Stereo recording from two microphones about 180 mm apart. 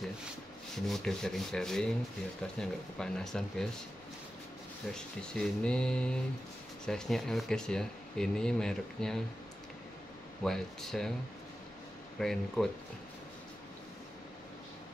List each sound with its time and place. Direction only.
0.8 s speech: centre (ahead or behind)
4.9 s speech: 5° left (ahead or behind)
10.4 s speech: centre (ahead or behind)
12.2 s speech: centre (ahead or behind)